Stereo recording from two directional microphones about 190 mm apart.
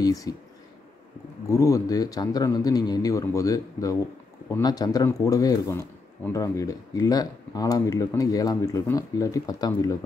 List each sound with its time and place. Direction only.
0.0 s speech: 20° left (ahead or behind)
1.5 s speech: 15° left (ahead or behind)